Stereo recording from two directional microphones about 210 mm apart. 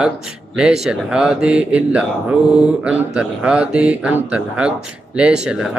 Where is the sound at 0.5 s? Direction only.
5° right (ahead or behind).